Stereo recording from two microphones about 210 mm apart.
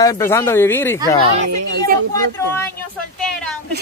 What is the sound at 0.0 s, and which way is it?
Speech, 10° left (ahead or behind).